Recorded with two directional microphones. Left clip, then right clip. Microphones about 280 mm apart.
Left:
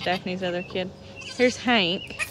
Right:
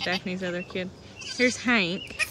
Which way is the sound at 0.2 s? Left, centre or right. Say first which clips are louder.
Left 3 dB; centre.